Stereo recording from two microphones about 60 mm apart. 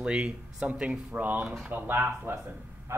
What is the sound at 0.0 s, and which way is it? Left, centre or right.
Speech, centre.